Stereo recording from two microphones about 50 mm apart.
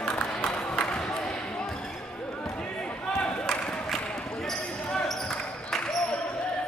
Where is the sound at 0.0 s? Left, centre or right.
Centre.